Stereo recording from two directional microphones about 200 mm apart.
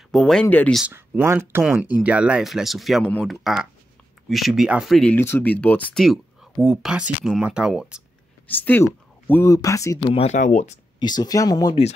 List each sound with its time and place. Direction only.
0.1 s speech: centre (ahead or behind)
0.8 s speech: 10° right (ahead or behind)
8.5 s speech: 10° left (ahead or behind)
10.1 s speech: 35° left (ahead or behind)
11.0 s speech: 20° left (ahead or behind)